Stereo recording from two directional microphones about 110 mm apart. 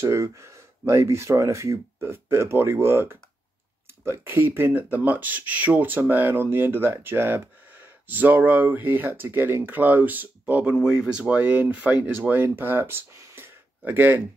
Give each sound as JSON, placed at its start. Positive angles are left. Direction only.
{"t": 0.0, "sound": "speech", "side_deg": -25}